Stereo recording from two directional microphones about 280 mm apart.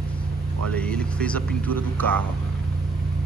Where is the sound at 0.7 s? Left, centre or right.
Centre.